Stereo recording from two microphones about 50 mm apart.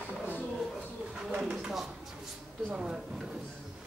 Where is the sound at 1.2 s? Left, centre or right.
Centre.